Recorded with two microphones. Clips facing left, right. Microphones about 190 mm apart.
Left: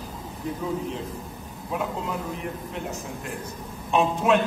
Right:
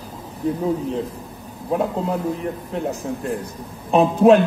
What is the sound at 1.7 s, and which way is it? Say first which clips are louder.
A man's voice: right 8 dB; 35° right (ahead or behind).